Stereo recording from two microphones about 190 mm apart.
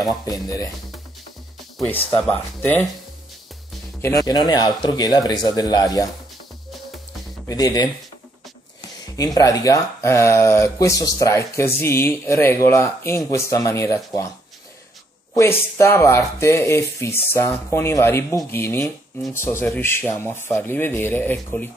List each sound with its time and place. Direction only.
0.1 s speech: 20° left (ahead or behind)
2.0 s speech: 10° left (ahead or behind)
4.0 s speech: 20° left (ahead or behind)
7.4 s speech: 20° left (ahead or behind)
9.1 s speech: 20° left (ahead or behind)
15.3 s speech: 15° left (ahead or behind)